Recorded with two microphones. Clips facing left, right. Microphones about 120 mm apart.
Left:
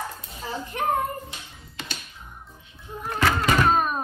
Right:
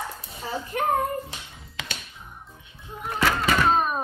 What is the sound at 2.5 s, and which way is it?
Music, centre (ahead or behind).